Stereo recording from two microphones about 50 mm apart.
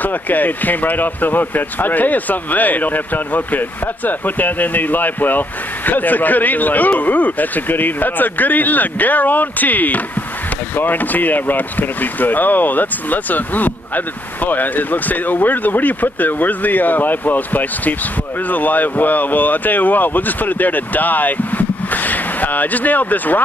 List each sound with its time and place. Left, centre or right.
0.0 s speech: left